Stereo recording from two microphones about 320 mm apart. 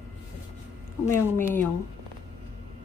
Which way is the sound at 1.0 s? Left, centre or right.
Centre.